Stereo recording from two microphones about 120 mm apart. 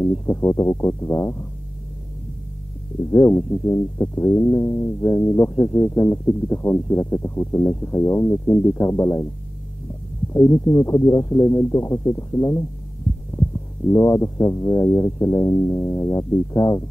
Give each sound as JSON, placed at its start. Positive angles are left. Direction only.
{"t": 0.0, "sound": "speech", "side_deg": 25}
{"t": 3.1, "sound": "speech", "side_deg": 25}
{"t": 10.3, "sound": "speech", "side_deg": 25}